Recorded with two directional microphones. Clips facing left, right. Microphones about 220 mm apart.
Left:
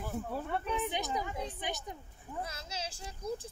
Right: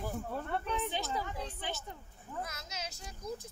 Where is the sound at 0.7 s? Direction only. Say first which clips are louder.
Left 2 dB; 15° left (ahead or behind).